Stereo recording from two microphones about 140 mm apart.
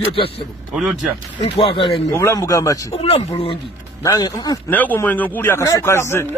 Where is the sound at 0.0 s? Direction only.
40° left (ahead or behind).